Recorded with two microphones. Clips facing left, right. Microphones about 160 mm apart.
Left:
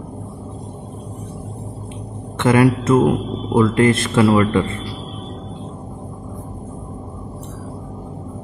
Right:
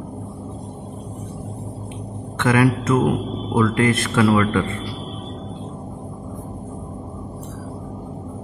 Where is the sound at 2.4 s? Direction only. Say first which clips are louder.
Left 3 dB; 30° left (ahead or behind).